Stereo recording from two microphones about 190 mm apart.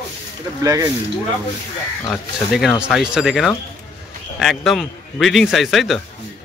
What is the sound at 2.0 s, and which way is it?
A man's voice, centre (ahead or behind).